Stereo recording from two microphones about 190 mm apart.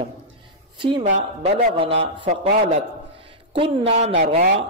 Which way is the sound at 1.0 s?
35° right (ahead or behind).